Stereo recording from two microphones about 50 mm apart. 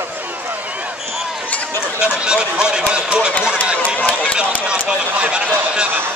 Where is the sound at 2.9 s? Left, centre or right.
Right.